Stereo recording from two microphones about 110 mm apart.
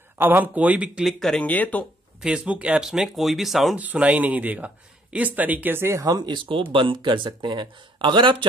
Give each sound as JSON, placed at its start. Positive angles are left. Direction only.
{"t": 0.2, "sound": "speech", "side_deg": -15}
{"t": 1.0, "sound": "speech", "side_deg": 5}
{"t": 2.2, "sound": "speech", "side_deg": -10}
{"t": 3.7, "sound": "speech", "side_deg": -15}